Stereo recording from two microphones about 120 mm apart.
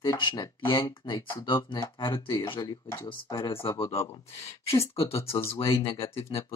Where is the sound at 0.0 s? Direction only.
35° left (ahead or behind).